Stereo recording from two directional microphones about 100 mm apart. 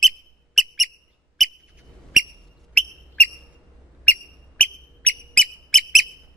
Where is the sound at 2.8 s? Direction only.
15° left (ahead or behind).